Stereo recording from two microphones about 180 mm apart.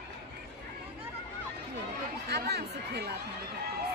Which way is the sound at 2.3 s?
65° right (ahead or behind).